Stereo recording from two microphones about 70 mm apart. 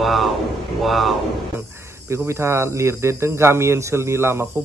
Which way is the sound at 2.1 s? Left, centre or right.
Right.